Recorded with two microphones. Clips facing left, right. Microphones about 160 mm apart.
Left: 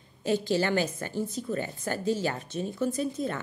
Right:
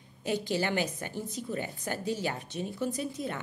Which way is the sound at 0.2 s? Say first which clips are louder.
Left 4 dB; 15° right (ahead or behind).